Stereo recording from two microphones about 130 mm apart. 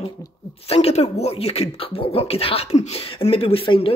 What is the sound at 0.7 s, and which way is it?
Speech, 55° left (ahead or behind).